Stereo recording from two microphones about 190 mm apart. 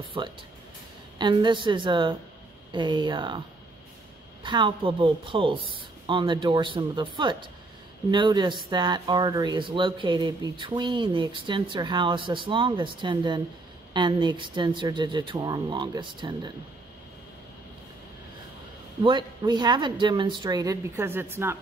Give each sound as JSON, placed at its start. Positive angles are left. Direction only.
{"t": 0.2, "sound": "speech", "side_deg": -25}
{"t": 19.0, "sound": "speech", "side_deg": -25}